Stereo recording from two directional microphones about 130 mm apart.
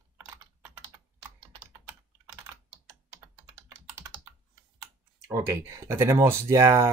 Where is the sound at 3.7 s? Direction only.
15° right (ahead or behind).